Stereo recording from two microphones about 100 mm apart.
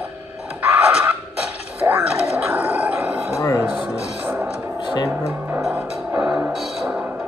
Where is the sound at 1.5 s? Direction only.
20° right (ahead or behind).